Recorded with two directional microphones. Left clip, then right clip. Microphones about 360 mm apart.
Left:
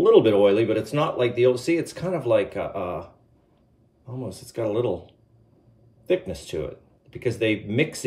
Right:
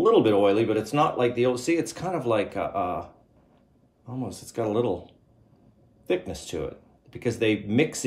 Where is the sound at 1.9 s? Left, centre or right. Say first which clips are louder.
Left 3 dB; right.